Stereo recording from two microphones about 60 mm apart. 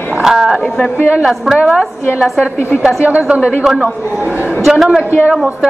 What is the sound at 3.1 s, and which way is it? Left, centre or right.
Speech, right.